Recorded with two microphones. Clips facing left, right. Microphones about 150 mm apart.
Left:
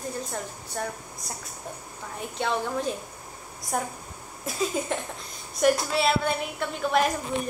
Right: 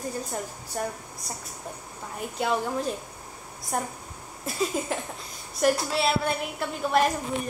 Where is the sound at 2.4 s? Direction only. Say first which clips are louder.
Right 1 dB; 5° right (ahead or behind).